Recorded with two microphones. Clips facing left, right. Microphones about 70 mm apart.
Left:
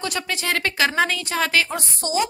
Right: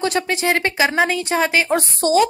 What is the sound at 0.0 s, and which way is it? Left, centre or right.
Speech, right.